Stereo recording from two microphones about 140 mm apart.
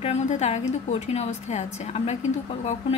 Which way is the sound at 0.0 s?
50° left (ahead or behind).